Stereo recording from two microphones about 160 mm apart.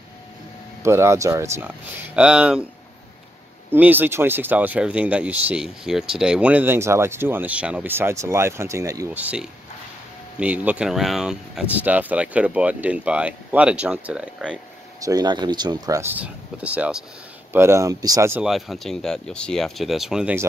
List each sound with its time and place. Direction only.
0.8 s speech: 15° right (ahead or behind)
3.7 s speech: 10° right (ahead or behind)
15.0 s speech: 25° right (ahead or behind)
18.4 s speech: centre (ahead or behind)